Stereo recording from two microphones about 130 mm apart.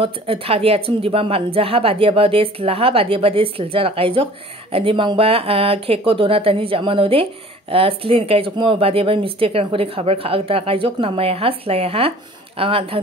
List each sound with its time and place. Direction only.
0.0 s speech: 45° right (ahead or behind)